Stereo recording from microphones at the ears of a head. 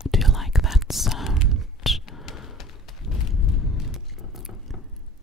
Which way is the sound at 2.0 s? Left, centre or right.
Left.